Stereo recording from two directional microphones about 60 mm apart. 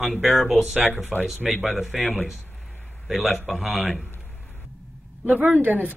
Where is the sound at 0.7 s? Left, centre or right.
Right.